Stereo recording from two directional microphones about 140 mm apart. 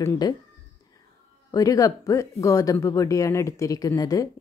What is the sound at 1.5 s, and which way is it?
Speech, 25° left (ahead or behind).